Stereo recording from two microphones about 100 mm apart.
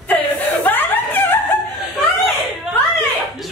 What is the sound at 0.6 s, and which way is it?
Snicker, 20° left (ahead or behind).